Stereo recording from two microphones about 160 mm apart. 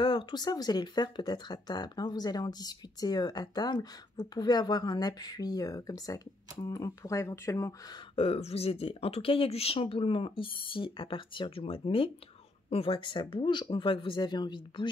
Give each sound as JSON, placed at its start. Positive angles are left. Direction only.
{"t": 0.0, "sound": "speech", "side_deg": 30}
{"t": 8.2, "sound": "speech", "side_deg": 40}